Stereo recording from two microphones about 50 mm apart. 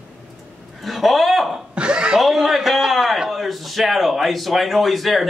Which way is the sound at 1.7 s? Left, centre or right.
Centre.